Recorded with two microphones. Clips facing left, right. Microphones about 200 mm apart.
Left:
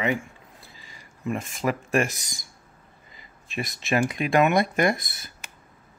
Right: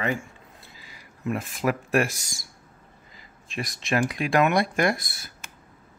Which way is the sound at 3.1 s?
Centre (ahead or behind).